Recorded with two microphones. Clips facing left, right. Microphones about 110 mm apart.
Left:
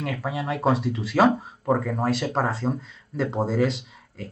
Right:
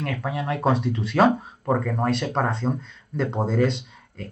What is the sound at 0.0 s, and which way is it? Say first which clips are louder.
Speech: right 1 dB; 5° left (ahead or behind).